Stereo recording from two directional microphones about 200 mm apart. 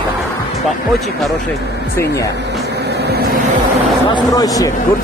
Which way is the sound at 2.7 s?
55° right (ahead or behind).